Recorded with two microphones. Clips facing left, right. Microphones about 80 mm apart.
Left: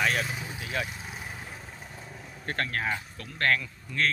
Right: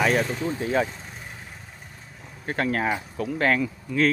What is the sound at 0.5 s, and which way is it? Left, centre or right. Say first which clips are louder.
Speech: right 12 dB; right.